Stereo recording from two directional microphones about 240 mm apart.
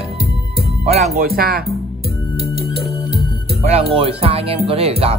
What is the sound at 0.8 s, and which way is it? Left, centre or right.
Speech, right.